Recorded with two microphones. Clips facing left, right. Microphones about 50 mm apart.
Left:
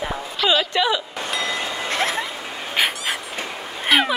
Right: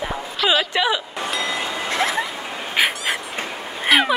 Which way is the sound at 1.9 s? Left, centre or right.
Right.